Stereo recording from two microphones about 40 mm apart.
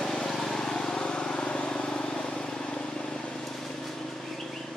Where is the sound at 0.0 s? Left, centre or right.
Centre; by 3.2 s left.